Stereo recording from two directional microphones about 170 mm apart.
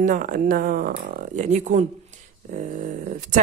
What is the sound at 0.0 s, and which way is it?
Speech, 50° right (ahead or behind).